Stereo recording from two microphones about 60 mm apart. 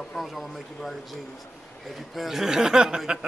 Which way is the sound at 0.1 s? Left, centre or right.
Centre.